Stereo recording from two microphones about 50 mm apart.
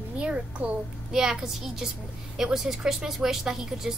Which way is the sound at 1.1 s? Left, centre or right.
Centre.